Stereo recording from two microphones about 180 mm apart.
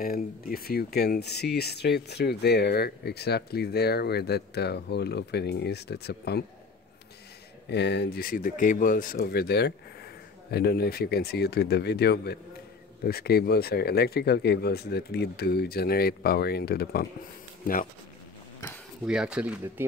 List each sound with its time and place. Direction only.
0.0 s speech: 55° left (ahead or behind)
7.7 s speech: 70° left (ahead or behind)
19.0 s speech: 5° right (ahead or behind)